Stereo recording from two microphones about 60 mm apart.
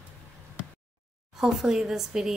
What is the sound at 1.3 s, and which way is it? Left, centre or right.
Speech, centre.